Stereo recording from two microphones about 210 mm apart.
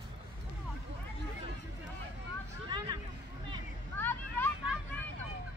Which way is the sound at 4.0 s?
10° left (ahead or behind).